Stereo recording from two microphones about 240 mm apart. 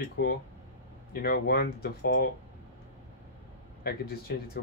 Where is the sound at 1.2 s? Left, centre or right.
Left.